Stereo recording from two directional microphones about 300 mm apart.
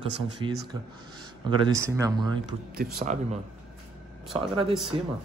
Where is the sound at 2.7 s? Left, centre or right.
Right.